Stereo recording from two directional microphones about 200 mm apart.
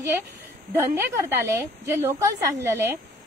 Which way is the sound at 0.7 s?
15° right (ahead or behind).